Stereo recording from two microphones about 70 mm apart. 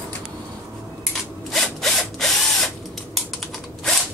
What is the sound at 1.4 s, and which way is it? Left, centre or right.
Drill, centre.